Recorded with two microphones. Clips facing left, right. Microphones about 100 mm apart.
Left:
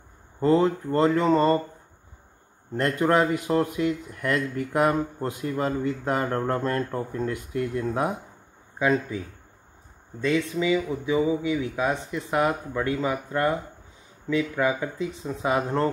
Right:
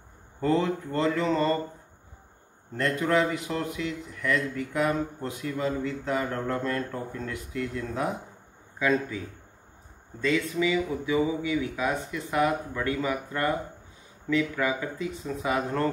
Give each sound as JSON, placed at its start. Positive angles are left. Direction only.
{"t": 0.4, "sound": "speech", "side_deg": 35}
{"t": 2.8, "sound": "speech", "side_deg": 45}
{"t": 7.6, "sound": "speech", "side_deg": 25}
{"t": 10.2, "sound": "speech", "side_deg": 20}